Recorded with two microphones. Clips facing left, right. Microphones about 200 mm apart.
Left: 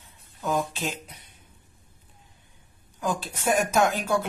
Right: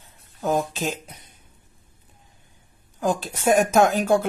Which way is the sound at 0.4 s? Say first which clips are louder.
Right 4 dB; 40° right (ahead or behind).